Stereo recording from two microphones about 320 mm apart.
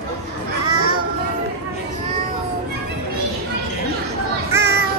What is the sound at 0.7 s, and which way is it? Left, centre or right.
Child singing, right.